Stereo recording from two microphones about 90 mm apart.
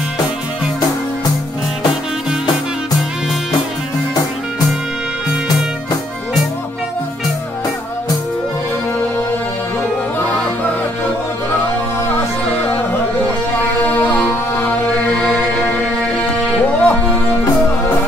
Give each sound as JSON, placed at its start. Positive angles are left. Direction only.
{"t": 16.8, "sound": "music", "side_deg": 20}